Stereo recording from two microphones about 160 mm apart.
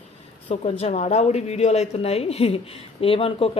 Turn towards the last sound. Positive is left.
turn(degrees=35)  # may be behind; listen again after turning